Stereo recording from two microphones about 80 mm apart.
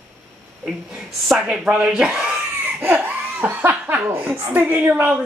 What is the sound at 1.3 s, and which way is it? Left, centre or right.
A woman's voice, centre.